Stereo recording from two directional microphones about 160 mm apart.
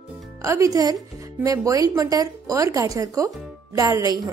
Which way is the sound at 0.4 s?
20° right (ahead or behind).